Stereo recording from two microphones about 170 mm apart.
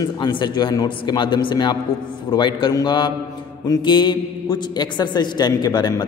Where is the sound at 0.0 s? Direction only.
25° left (ahead or behind).